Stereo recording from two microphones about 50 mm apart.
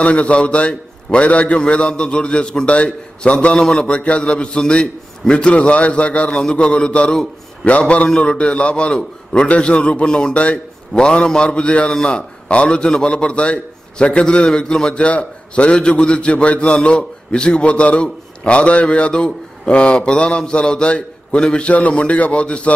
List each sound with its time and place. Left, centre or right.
0.0 s a man's voice: left